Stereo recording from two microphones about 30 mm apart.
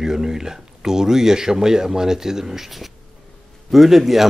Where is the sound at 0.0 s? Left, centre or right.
Centre.